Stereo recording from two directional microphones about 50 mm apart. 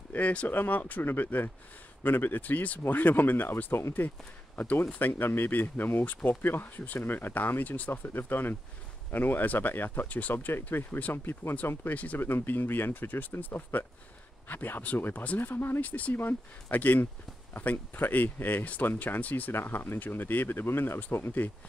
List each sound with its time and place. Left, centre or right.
0.1 s speech: left
0.5 s speech: left
7.9 s speech: left
10.3 s speech: left
11.6 s speech: left
15.8 s speech: left
19.5 s speech: left
21.4 s speech: left